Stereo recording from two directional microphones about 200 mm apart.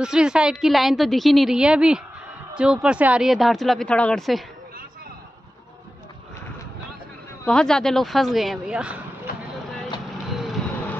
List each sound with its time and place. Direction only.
0.0 s a woman's voice: 5° right (ahead or behind)
7.4 s speech: 5° left (ahead or behind)
10.3 s vehicle: centre (ahead or behind)